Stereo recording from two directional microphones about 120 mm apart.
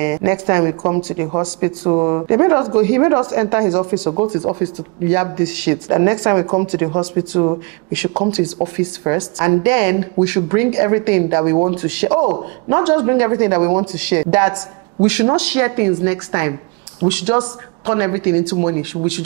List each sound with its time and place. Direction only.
0.0 s speech: 20° right (ahead or behind)
5.9 s speech: 25° right (ahead or behind)